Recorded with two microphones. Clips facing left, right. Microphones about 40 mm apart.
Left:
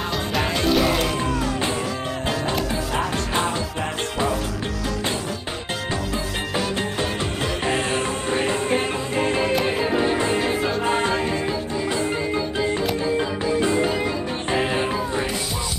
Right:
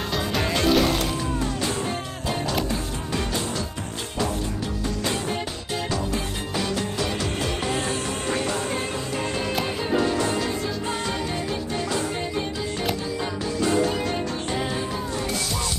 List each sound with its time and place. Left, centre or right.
0.3 s music: centre
7.6 s music: left
13.6 s music: left
14.5 s music: left